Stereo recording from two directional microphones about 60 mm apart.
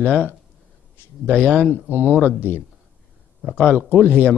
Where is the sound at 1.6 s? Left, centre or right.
Left.